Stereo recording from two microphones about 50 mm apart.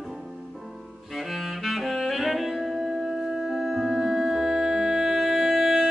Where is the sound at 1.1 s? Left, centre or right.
Centre.